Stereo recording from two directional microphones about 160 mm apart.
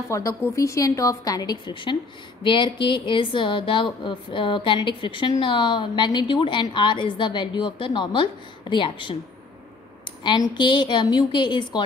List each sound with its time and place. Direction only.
0.1 s a woman's voice: 20° left (ahead or behind)
10.2 s a woman's voice: 30° left (ahead or behind)